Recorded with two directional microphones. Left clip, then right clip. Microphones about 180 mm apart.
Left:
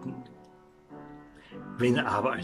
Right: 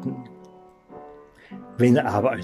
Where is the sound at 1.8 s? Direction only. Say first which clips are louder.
Right 6 dB; 35° right (ahead or behind).